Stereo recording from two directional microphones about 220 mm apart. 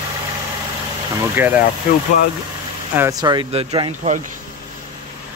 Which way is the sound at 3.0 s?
15° right (ahead or behind).